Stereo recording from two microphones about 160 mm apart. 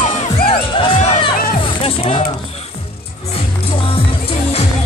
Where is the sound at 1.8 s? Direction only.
35° left (ahead or behind).